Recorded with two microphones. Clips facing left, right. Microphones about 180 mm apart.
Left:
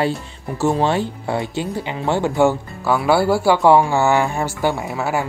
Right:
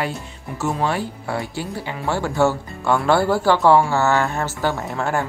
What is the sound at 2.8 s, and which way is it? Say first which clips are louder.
A man's voice: left 1 dB; 5° left (ahead or behind).